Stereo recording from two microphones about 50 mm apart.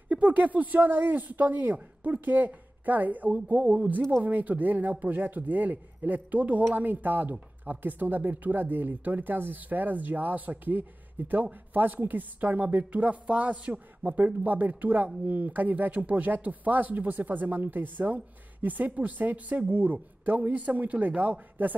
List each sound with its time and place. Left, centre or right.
0.1 s speech: right